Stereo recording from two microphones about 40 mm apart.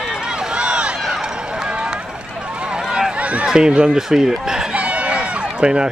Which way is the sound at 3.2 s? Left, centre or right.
Right.